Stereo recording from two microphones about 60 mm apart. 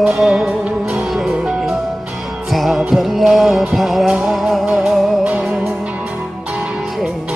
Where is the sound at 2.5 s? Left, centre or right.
Centre.